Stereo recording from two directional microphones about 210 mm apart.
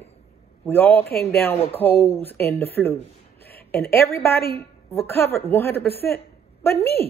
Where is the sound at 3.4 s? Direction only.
45° left (ahead or behind).